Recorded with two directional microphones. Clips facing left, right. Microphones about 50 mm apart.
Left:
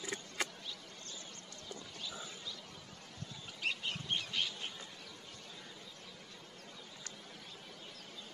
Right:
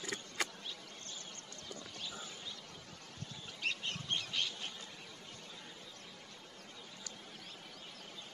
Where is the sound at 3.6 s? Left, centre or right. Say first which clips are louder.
Left 1 dB; centre.